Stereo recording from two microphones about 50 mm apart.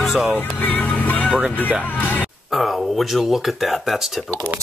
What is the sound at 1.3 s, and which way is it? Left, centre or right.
Speech, centre.